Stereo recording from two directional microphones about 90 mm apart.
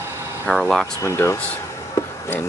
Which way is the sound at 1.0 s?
30° left (ahead or behind).